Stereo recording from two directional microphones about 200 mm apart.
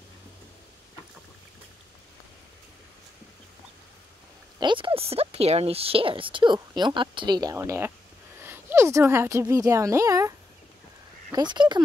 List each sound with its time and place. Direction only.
4.6 s a woman's voice: 25° right (ahead or behind)
11.3 s speech: 20° right (ahead or behind)